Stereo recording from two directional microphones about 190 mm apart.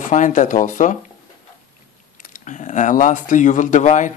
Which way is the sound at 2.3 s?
40° left (ahead or behind).